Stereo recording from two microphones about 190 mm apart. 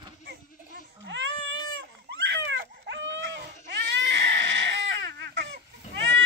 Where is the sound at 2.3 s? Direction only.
80° right.